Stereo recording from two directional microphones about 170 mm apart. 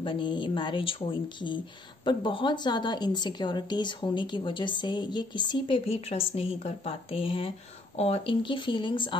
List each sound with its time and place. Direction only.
0.0 s a woman's voice: 30° left (ahead or behind)